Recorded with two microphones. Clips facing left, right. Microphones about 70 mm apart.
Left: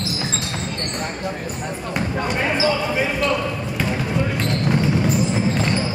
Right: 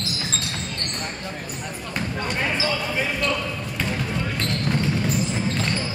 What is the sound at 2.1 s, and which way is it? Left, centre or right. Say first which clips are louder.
Basketball bounce: left 4 dB; centre.